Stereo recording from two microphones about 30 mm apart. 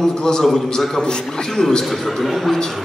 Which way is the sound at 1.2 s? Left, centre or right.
Centre.